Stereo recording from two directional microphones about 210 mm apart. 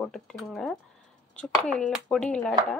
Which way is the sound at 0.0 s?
Centre (ahead or behind).